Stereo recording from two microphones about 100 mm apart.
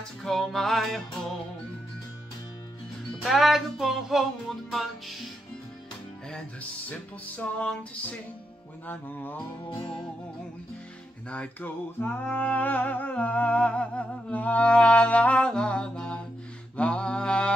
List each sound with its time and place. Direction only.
0.2 s music: 5° left (ahead or behind)
3.3 s music: centre (ahead or behind)
6.9 s music: 15° left (ahead or behind)
9.7 s music: 60° left (ahead or behind)
11.2 s music: 15° left (ahead or behind)